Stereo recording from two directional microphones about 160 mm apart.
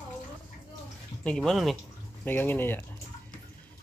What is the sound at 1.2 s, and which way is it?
Speech, 5° left (ahead or behind).